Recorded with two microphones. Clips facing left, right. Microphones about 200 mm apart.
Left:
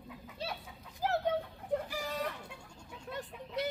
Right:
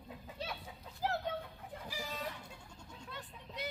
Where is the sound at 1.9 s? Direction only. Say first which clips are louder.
Left 5 dB; 60° left (ahead or behind).